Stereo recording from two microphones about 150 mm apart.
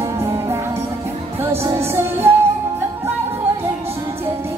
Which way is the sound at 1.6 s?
15° right (ahead or behind).